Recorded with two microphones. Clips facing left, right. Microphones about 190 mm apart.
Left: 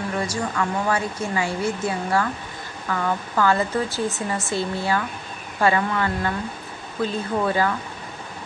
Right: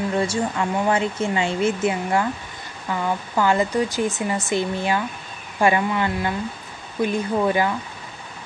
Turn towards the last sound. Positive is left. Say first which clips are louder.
# right 2 dB
turn(degrees=-15)  # may be behind; listen again after turning